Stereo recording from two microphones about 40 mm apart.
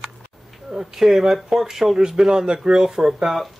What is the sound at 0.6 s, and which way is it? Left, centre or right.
Speech, centre.